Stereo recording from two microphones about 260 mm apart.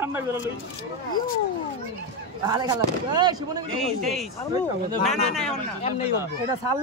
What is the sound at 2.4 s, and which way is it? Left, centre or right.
A man's voice, centre.